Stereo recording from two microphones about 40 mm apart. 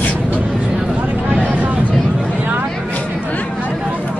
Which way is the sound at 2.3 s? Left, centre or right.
Right.